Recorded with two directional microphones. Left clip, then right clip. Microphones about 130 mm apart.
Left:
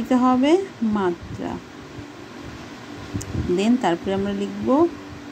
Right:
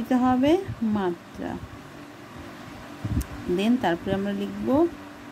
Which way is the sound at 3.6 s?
10° right (ahead or behind).